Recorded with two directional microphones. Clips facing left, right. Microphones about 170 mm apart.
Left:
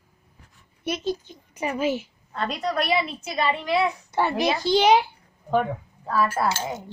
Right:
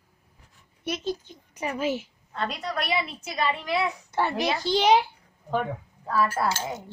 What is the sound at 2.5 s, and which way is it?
Speech, 40° left (ahead or behind).